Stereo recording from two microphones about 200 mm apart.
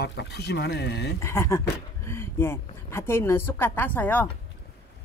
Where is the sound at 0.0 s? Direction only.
60° left (ahead or behind).